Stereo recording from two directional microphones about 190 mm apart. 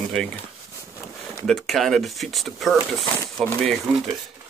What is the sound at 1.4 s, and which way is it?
Speech, centre (ahead or behind).